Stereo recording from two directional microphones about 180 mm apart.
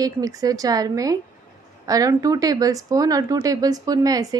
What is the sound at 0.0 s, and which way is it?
A woman's voice, 20° right (ahead or behind).